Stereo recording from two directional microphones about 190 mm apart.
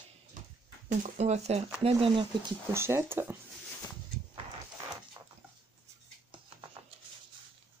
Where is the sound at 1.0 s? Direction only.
35° right (ahead or behind).